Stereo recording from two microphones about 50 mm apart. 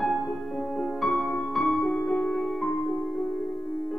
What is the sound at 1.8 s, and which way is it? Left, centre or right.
Music, centre.